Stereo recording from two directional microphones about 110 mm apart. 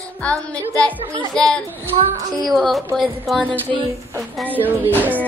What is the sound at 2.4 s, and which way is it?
Speech, centre (ahead or behind).